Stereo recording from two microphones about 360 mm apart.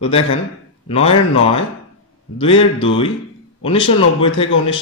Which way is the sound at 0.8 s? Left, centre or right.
Centre.